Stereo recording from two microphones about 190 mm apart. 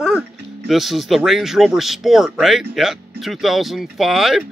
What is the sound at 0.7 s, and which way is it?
Speech, centre (ahead or behind).